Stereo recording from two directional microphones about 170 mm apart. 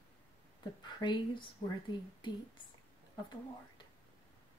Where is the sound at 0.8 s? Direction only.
25° left (ahead or behind).